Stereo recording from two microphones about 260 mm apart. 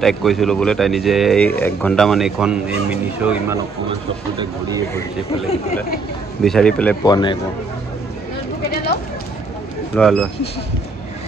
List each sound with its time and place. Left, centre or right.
0.0 s speech: centre
6.4 s speech: centre
8.6 s a sound: left
9.9 s speech: centre